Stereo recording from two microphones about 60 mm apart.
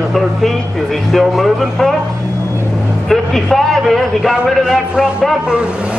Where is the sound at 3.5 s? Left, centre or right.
Centre.